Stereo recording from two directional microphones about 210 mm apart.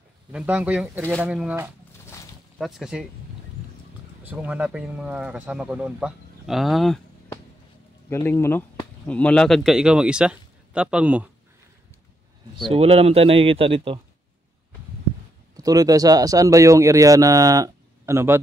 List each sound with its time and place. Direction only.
0.3 s speech: 5° right (ahead or behind)
4.2 s speech: 10° right (ahead or behind)
8.1 s speech: 10° left (ahead or behind); by 11.2 s 5° right (ahead or behind)
12.6 s speech: 25° right (ahead or behind)
15.5 s speech: 15° right (ahead or behind)